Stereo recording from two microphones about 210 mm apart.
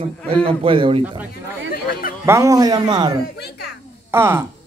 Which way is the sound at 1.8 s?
45° left (ahead or behind).